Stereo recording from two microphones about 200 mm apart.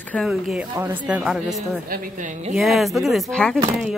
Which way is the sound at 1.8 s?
45° right (ahead or behind).